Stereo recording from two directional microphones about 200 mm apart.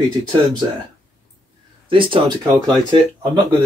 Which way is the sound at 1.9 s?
25° right (ahead or behind).